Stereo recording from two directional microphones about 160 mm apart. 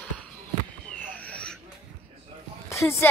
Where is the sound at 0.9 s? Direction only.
10° left (ahead or behind).